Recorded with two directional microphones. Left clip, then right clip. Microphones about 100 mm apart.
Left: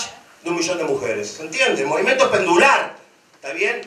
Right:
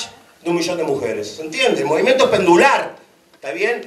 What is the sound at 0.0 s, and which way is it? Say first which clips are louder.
A man's voice: right 2 dB; 45° left (ahead or behind).